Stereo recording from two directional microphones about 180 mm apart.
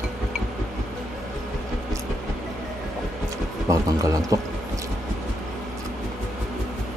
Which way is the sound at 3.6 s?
20° right (ahead or behind).